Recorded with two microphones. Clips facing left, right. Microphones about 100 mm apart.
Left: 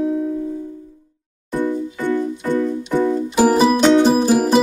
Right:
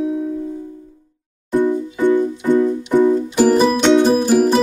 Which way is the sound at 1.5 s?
15° right (ahead or behind).